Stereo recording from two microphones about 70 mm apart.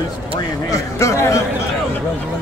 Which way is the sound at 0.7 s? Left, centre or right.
Left.